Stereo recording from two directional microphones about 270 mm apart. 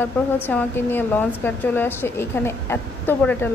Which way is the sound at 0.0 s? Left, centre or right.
Centre.